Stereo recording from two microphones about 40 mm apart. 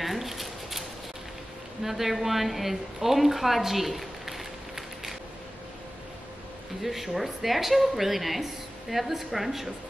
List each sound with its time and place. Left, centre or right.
0.0 s a sound: centre
1.8 s a woman's voice: centre
6.8 s a woman's voice: centre